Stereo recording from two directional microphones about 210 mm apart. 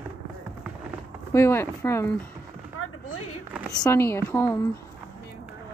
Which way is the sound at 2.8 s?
90° left.